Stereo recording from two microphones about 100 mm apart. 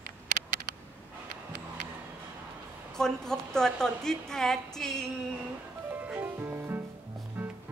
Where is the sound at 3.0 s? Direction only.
5° left (ahead or behind).